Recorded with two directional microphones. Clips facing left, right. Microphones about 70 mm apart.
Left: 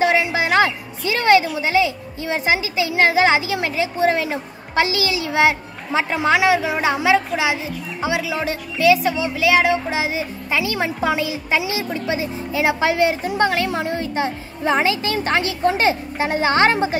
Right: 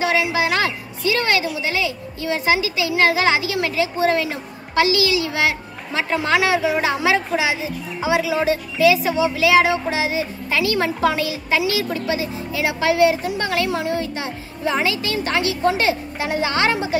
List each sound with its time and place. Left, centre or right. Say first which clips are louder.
0.0 s a woman's voice: left 1 dB; left
5.9 s a woman's voice: left 2 dB; centre; by 16.9 s left